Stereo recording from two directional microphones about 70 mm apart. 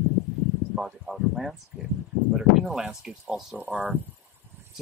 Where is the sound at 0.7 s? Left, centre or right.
Centre.